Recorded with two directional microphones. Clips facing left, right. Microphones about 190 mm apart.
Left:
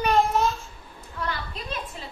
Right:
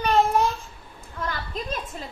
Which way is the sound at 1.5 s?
45° right (ahead or behind).